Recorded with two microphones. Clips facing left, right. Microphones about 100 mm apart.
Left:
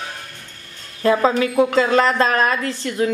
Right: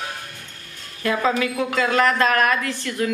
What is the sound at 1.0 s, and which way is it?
A woman's voice, 30° left (ahead or behind).